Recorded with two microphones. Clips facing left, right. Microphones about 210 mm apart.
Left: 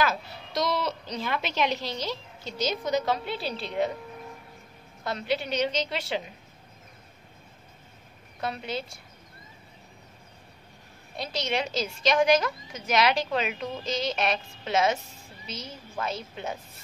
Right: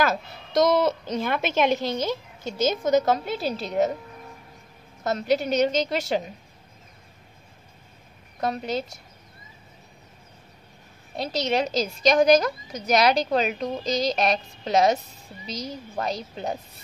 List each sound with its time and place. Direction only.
0.0 s a woman's voice: 45° right (ahead or behind)
5.0 s a woman's voice: 45° right (ahead or behind)
8.4 s a woman's voice: 40° right (ahead or behind)
11.3 s a woman's voice: 40° right (ahead or behind)